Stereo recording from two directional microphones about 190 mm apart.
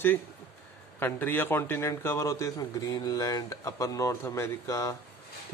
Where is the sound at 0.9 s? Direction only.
10° left (ahead or behind).